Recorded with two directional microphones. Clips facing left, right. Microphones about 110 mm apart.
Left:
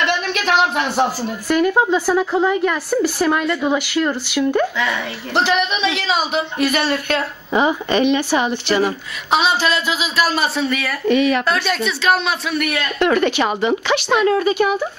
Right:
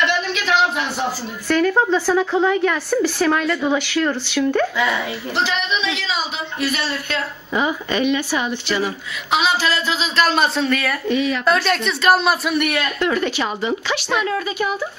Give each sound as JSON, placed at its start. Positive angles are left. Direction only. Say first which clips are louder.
{"t": 0.3, "sound": "a sound", "louder": "left 2 dB", "side_deg": 55}
{"t": 1.5, "sound": "a woman's voice", "louder": "left 1 dB", "side_deg": 10}
{"t": 4.7, "sound": "a woman's voice", "louder": "right 1 dB", "side_deg": -5}
{"t": 5.3, "sound": "speech", "louder": "left 5 dB", "side_deg": 60}
{"t": 7.5, "sound": "speech", "louder": "left 4 dB", "side_deg": 25}
{"t": 8.3, "sound": "speech", "louder": "left 4 dB", "side_deg": 65}
{"t": 9.3, "sound": "a woman's voice", "louder": "left 2 dB", "side_deg": 25}
{"t": 11.1, "sound": "speech", "louder": "left 6 dB", "side_deg": 65}
{"t": 11.4, "sound": "a woman's voice", "louder": "right 1 dB", "side_deg": 0}
{"t": 13.0, "sound": "speech", "louder": "left 6 dB", "side_deg": 65}